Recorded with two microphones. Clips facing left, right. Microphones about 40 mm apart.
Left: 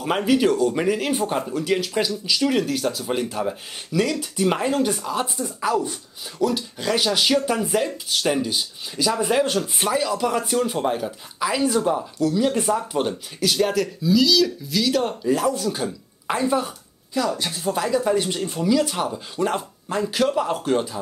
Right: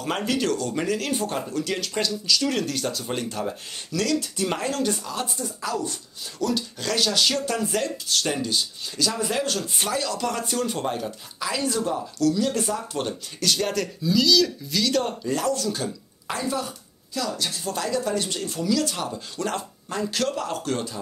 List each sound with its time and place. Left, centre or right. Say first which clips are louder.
0.0 s speech: left 6 dB; centre